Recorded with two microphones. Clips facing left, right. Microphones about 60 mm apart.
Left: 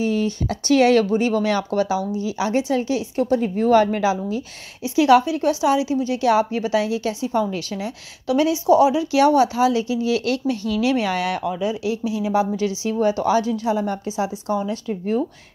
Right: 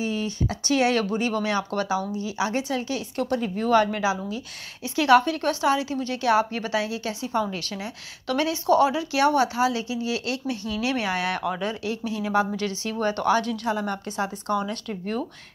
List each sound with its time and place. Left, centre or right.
0.0 s a sound: left
1.0 s speech: left
1.4 s a woman's voice: right
2.5 s a woman's voice: left
3.3 s speech: left
4.9 s a woman's voice: right
8.3 s a woman's voice: right
11.7 s a woman's voice: right